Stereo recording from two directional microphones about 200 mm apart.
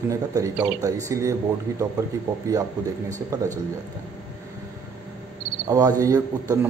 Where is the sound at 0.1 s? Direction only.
15° right (ahead or behind).